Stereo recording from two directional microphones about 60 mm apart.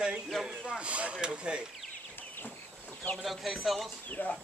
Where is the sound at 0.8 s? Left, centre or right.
Right.